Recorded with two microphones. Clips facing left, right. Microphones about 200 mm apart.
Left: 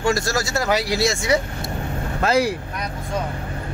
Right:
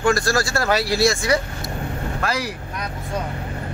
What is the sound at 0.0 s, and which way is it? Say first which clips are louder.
Speech: right 2 dB; 25° left (ahead or behind).